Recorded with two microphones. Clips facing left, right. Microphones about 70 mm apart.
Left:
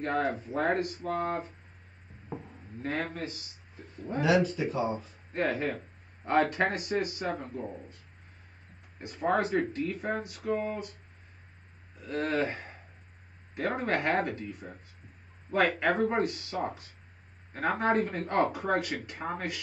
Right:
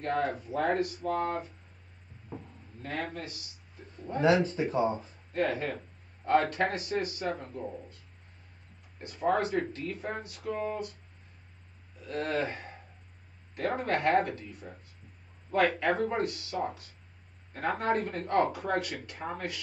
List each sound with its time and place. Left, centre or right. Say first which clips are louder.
0.0 s speech: left 1 dB; left
2.8 s speech: left 3 dB; left
4.2 s speech: right 1 dB; right
5.3 s speech: even; left
9.0 s speech: even; left
12.0 s speech: left 2 dB; left
13.6 s speech: even; left
15.8 s speech: left 2 dB; left